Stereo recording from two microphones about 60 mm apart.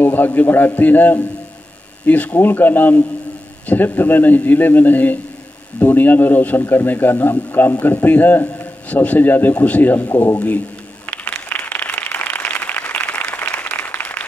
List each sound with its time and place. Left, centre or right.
0.0 s speech: left
11.1 s applause: left